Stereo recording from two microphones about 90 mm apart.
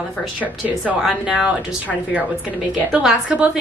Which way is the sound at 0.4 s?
20° right (ahead or behind).